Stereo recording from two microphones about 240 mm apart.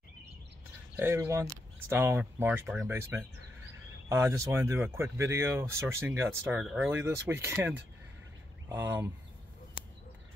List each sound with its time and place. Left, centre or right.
0.9 s speech: centre